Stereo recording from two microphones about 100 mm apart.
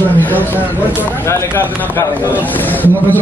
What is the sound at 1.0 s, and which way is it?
A man's voice, 25° left (ahead or behind).